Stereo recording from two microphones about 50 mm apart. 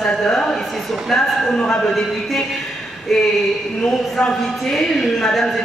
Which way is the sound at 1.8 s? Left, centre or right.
Centre.